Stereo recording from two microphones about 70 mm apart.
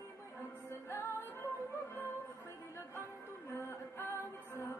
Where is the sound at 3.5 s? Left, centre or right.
Left.